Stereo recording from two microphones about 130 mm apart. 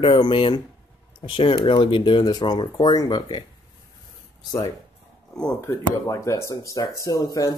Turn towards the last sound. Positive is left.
turn(degrees=25)  # may be behind; listen again after turning